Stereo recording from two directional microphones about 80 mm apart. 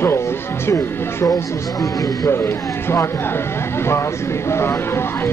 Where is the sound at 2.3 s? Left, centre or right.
Left.